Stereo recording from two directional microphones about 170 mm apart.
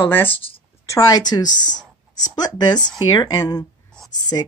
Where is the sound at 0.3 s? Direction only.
30° left (ahead or behind).